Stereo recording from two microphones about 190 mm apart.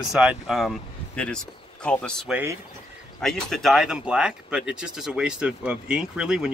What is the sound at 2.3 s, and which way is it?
Speech, 10° right (ahead or behind).